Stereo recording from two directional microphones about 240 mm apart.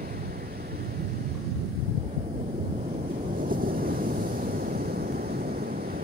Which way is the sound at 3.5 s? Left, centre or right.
Right.